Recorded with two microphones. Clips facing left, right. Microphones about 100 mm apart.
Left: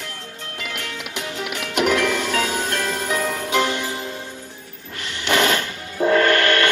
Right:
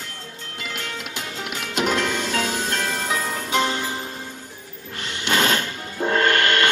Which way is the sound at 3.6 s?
30° right (ahead or behind).